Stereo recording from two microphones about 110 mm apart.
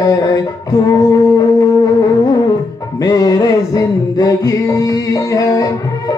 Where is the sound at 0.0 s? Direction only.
30° left (ahead or behind).